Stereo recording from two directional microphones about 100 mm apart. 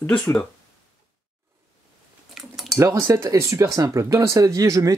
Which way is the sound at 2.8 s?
30° right (ahead or behind).